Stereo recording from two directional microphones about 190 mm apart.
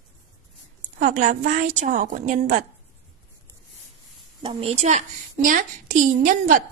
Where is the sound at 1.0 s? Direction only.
45° right (ahead or behind).